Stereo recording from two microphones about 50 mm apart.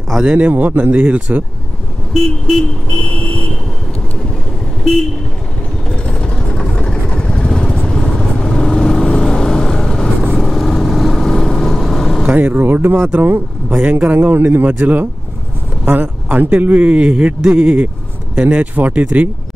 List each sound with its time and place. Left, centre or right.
0.2 s speech: right
2.1 s vehicle: centre
2.9 s vehicle: left
5.9 s vehicle: centre
12.3 s speech: right
13.8 s speech: right